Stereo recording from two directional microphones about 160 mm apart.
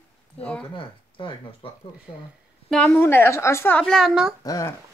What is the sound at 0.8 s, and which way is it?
Speech, 30° left (ahead or behind).